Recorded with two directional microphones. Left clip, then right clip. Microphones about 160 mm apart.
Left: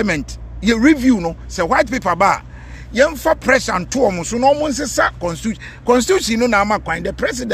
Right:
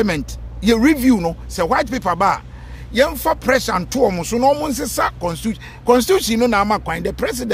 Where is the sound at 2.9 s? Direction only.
15° right (ahead or behind).